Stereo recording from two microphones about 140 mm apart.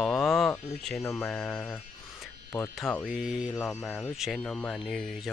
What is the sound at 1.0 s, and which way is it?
Speech, 15° left (ahead or behind).